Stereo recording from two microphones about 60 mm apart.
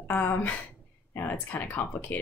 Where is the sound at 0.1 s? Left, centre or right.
Left.